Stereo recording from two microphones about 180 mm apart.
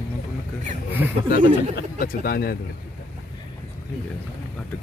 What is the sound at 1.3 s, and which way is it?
Speech, 60° left (ahead or behind).